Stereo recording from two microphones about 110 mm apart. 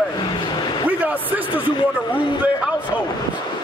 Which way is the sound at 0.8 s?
15° right (ahead or behind).